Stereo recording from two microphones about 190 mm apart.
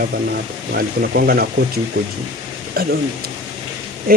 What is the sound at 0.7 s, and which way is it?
Speech, 55° right (ahead or behind).